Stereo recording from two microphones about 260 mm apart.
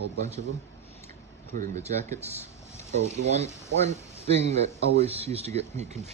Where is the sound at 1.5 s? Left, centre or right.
Right.